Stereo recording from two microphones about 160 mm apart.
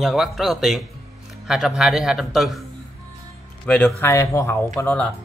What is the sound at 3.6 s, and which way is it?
Speech, 10° left (ahead or behind).